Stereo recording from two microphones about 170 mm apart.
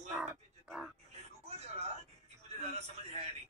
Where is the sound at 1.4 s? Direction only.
40° right (ahead or behind).